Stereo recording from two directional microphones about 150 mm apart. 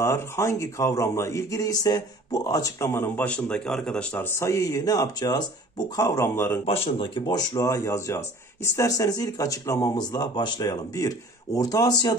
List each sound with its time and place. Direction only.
0.0 s speech: 20° left (ahead or behind)
6.6 s speech: 40° left (ahead or behind); by 12.2 s 25° left (ahead or behind)